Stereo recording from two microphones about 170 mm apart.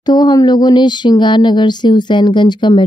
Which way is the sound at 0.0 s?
25° left (ahead or behind).